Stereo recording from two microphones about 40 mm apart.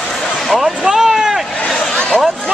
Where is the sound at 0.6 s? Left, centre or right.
Centre.